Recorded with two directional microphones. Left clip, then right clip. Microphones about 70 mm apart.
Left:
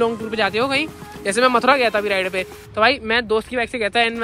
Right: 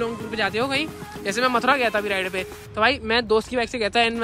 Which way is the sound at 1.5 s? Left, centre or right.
Right.